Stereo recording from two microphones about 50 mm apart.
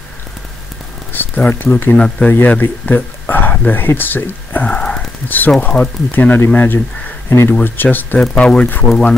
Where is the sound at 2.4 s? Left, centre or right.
Left.